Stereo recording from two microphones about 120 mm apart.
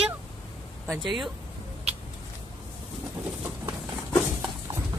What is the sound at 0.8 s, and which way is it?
Speech, centre (ahead or behind).